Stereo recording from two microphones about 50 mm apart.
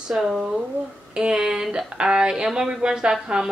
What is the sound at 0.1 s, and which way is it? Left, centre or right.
Speech, centre.